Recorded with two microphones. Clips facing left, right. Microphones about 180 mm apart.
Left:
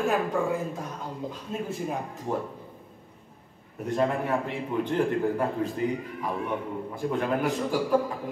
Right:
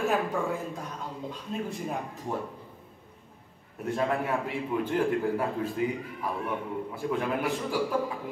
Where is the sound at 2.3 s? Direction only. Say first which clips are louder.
Left 3 dB; 30° left (ahead or behind).